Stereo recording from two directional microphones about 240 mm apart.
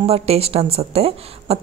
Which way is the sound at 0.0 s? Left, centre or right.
Right.